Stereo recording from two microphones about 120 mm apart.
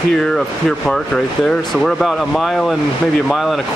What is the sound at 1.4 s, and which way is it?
Speech, centre (ahead or behind).